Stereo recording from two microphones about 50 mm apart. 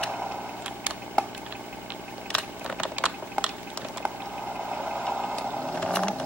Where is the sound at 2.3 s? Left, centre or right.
Left.